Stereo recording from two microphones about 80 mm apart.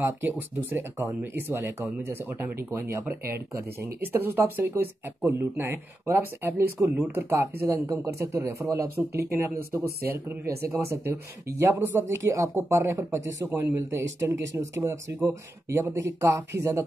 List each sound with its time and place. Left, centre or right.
0.0 s speech: right
8.9 s speech: right